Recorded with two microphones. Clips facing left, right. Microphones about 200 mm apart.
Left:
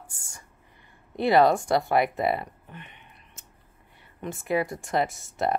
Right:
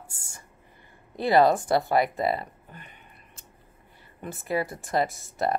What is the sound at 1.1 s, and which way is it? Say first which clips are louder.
Speech: even; centre (ahead or behind).